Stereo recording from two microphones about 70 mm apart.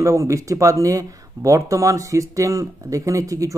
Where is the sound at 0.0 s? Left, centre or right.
Right.